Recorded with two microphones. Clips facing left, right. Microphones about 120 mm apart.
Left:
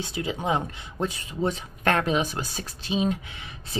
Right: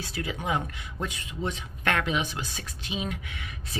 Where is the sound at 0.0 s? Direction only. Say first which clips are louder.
Left 4 dB; 25° left (ahead or behind).